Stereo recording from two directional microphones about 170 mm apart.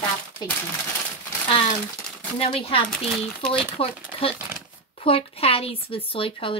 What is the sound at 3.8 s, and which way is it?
Speech, 35° left (ahead or behind).